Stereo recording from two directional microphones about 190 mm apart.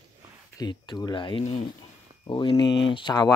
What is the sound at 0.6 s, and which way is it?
Speech, 25° left (ahead or behind).